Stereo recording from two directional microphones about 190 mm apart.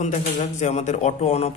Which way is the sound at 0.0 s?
40° left (ahead or behind).